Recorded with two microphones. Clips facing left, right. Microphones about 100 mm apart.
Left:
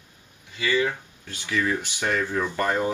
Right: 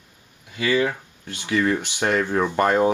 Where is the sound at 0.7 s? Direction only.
50° right (ahead or behind).